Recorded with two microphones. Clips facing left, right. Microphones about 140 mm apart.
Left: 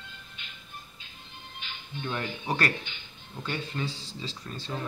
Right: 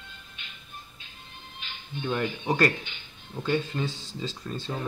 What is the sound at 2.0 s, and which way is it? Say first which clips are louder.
Speech: right 4 dB; 20° right (ahead or behind).